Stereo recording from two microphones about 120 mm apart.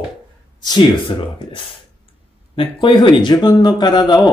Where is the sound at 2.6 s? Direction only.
45° left (ahead or behind).